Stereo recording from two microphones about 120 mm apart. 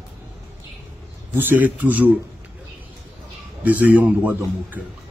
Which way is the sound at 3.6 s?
15° right (ahead or behind).